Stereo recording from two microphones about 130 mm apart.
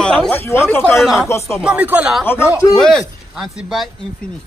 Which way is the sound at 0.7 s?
15° left (ahead or behind).